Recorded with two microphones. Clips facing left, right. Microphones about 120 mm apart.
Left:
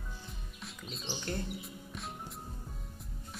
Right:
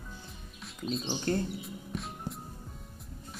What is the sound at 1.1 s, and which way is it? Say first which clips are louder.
Speech: right 6 dB; 40° right (ahead or behind).